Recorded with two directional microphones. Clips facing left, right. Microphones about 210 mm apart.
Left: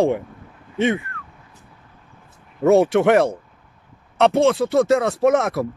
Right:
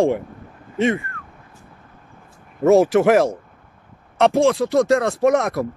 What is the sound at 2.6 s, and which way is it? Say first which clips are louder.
Speech: right 1 dB; centre (ahead or behind).